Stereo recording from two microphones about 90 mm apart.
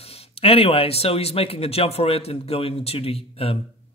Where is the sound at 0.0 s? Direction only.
90° left.